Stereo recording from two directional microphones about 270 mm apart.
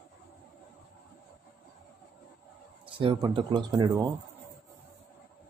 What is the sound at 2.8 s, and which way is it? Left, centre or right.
Speech, centre.